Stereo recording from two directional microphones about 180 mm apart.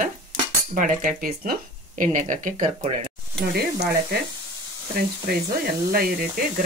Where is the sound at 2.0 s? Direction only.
45° right (ahead or behind).